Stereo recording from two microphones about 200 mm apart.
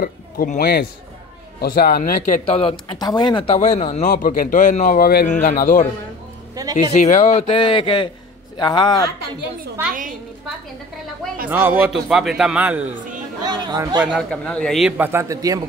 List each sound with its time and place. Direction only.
0.0 s a man's voice: 45° left (ahead or behind); by 2.7 s 30° left (ahead or behind)
2.9 s speech: 20° left (ahead or behind)
3.5 s a man's voice: 35° left (ahead or behind)
6.5 s music: 20° right (ahead or behind)
6.9 s a man's voice: 35° left (ahead or behind); by 9.0 s 20° left (ahead or behind)
11.4 s a man's voice: 10° right (ahead or behind)
13.4 s speech: 20° right (ahead or behind)
14.1 s a man's voice: 5° left (ahead or behind); by 15.6 s 15° right (ahead or behind)